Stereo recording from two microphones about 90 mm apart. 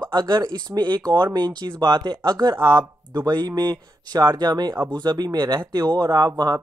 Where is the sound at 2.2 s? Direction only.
45° right (ahead or behind).